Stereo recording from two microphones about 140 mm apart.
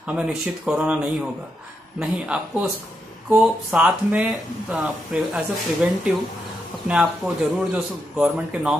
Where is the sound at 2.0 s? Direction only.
10° right (ahead or behind).